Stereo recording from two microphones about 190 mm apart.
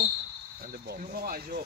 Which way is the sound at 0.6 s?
55° right (ahead or behind).